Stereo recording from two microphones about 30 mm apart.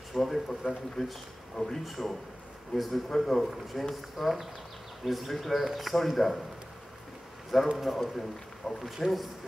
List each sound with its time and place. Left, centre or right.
0.1 s speech: centre
1.0 s speech: centre
1.6 s speech: left
1.9 s speech: centre
7.7 s speech: centre
8.0 s speech: centre